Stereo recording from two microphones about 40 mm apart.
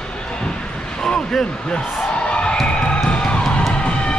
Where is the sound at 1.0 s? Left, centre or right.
Centre.